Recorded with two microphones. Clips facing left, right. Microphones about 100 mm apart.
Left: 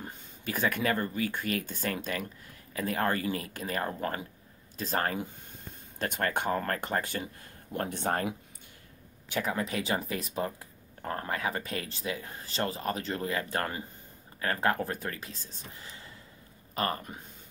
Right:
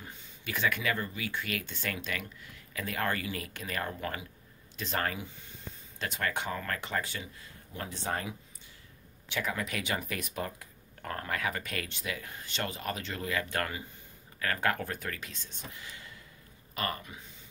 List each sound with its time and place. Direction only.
0.0 s speech: 45° left (ahead or behind)
5.9 s speech: 50° left (ahead or behind)
9.3 s speech: 35° left (ahead or behind)